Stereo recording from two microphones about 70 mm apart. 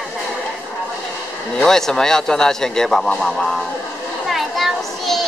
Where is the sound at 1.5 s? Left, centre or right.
Centre.